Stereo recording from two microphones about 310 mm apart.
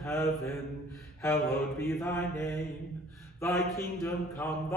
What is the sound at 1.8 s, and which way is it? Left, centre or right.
A man's voice, centre.